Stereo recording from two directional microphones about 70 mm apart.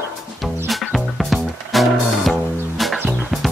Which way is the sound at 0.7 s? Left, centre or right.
Centre.